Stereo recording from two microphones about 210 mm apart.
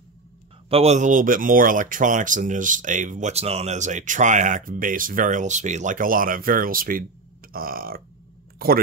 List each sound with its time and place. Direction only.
0.7 s speech: 30° right (ahead or behind)
7.5 s burping: 45° right (ahead or behind)